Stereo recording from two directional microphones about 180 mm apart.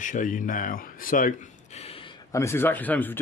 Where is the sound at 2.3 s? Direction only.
15° left (ahead or behind).